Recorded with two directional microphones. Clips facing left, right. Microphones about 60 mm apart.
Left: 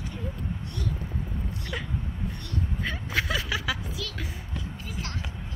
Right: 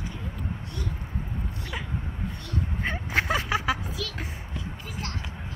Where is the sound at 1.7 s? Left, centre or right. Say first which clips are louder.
Left 1 dB; centre.